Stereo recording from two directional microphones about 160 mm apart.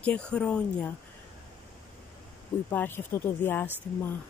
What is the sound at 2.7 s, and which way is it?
Speech, 10° left (ahead or behind).